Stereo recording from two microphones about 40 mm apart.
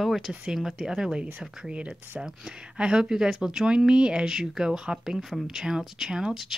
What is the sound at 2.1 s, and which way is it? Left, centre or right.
Speech, centre.